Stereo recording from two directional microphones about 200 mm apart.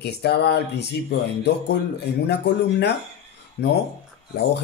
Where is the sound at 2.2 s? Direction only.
55° left (ahead or behind).